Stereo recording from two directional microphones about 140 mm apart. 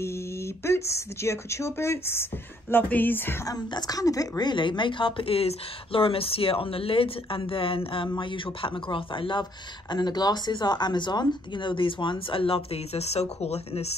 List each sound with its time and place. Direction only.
0.7 s speech: 20° left (ahead or behind)
3.5 s speech: 30° left (ahead or behind); by 13.8 s 50° left (ahead or behind)